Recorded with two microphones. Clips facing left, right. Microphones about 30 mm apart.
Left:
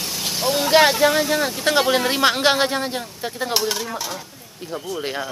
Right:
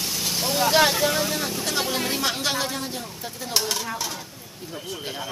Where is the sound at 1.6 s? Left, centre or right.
Left.